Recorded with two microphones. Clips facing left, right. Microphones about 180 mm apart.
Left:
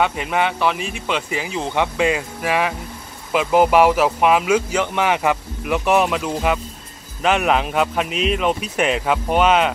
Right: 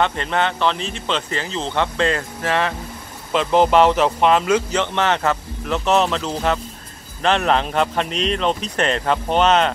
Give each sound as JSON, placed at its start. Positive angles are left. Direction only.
{"t": 0.0, "sound": "speech", "side_deg": 10}